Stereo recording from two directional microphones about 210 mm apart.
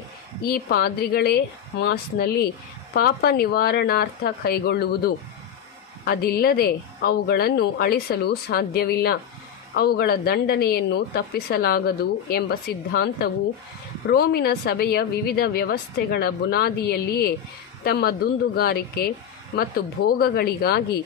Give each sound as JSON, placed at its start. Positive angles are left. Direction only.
{"t": 0.5, "sound": "a woman's voice", "side_deg": 50}